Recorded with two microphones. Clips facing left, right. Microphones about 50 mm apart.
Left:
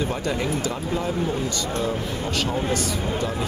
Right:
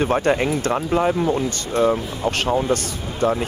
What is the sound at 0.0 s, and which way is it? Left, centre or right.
Speech, right.